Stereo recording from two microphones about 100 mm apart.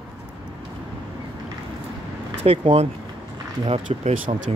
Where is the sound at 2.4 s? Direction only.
75° right (ahead or behind).